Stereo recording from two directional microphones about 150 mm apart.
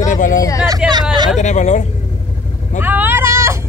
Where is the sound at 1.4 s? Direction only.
50° left (ahead or behind).